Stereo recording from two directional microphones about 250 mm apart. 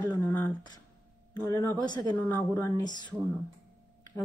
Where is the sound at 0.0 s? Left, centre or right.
Centre.